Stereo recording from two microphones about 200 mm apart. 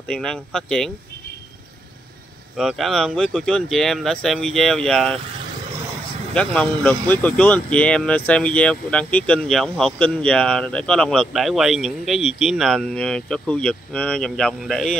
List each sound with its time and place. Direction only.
0.1 s speech: 5° left (ahead or behind)
2.5 s speech: centre (ahead or behind)
6.3 s speech: 5° left (ahead or behind)